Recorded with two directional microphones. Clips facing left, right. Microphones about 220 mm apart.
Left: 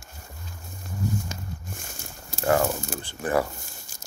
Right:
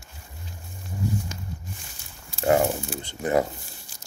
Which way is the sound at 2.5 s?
15° right (ahead or behind).